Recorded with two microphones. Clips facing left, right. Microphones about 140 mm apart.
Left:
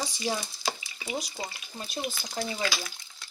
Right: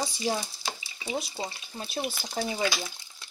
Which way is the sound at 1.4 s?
30° right (ahead or behind).